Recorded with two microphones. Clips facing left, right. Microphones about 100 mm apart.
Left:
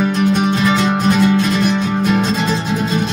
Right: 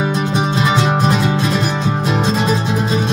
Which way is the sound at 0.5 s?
20° right (ahead or behind).